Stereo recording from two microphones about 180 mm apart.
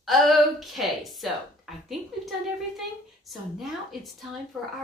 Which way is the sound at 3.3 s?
Centre (ahead or behind).